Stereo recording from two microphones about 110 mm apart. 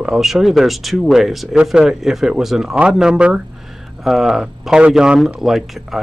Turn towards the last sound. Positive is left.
turn(degrees=0)  # may be behind; listen again after turning